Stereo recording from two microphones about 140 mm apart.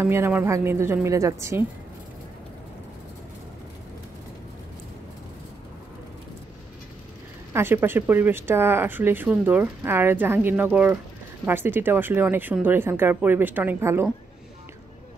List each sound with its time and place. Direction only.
0.0 s a woman's voice: 15° right (ahead or behind)
7.5 s speech: 15° right (ahead or behind)